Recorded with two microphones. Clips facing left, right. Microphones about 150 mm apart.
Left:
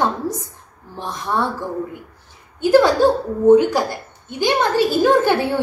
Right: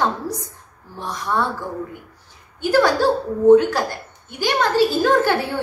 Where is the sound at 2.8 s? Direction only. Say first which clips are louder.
Left 3 dB; 20° left (ahead or behind).